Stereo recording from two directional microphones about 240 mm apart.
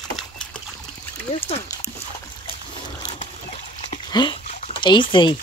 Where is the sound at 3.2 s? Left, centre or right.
Left.